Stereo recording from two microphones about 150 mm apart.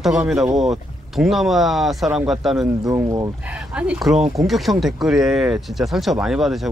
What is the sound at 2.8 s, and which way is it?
Speech, 25° right (ahead or behind).